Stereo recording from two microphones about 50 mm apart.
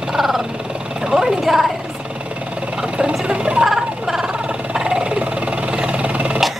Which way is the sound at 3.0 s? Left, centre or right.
Centre.